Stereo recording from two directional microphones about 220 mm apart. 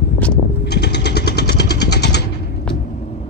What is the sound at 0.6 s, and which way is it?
Vehicle, 50° left (ahead or behind).